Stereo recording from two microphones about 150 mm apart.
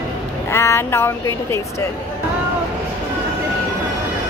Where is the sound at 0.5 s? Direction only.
20° left (ahead or behind).